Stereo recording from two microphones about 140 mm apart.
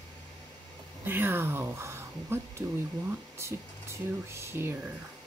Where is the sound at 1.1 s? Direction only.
15° right (ahead or behind).